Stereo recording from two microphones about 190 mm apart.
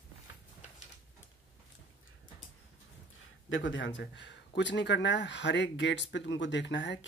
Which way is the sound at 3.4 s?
85° left.